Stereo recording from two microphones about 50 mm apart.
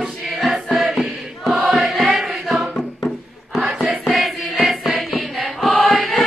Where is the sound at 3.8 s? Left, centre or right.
Centre.